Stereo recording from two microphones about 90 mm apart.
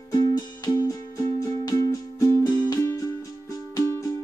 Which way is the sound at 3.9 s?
35° left (ahead or behind).